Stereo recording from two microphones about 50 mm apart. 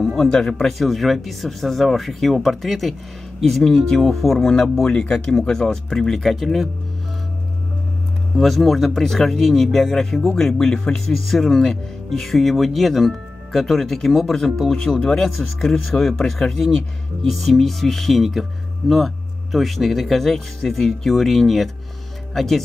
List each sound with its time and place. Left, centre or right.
0.0 s speech: centre
0.3 s speech: centre
0.7 s speech: centre
4.9 s speech: centre
8.4 s speech: centre